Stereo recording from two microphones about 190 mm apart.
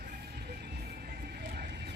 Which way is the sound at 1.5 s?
60° right (ahead or behind).